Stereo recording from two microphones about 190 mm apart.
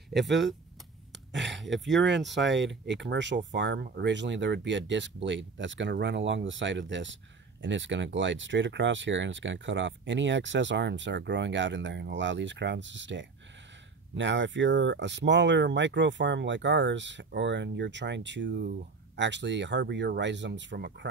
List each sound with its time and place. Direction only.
0.1 s speech: 65° right (ahead or behind)